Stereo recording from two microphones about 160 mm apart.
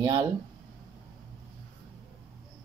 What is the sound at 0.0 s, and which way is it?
Speech, 20° right (ahead or behind).